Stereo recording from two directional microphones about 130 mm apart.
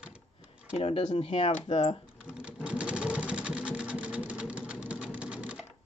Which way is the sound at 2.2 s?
10° right (ahead or behind).